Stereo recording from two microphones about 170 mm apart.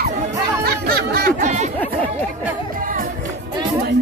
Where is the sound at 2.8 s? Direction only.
50° right (ahead or behind).